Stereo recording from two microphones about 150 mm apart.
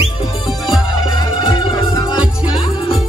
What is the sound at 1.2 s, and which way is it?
Music, 30° left (ahead or behind).